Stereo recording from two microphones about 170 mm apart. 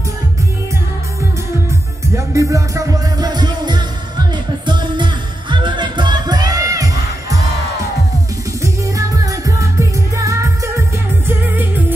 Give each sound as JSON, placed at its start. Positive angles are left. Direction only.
{"t": 1.7, "sound": "music", "side_deg": -20}
{"t": 8.6, "sound": "music", "side_deg": -20}